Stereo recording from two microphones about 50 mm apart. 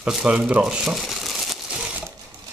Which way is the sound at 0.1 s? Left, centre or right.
Centre.